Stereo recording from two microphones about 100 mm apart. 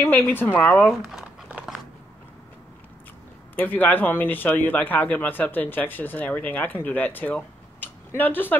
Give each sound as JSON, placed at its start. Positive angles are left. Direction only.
{"t": 0.0, "sound": "a woman's voice", "side_deg": 25}
{"t": 0.8, "sound": "speech", "side_deg": 0}
{"t": 3.5, "sound": "speech", "side_deg": 15}